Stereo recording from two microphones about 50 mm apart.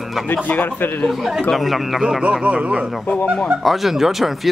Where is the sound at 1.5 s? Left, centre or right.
Centre.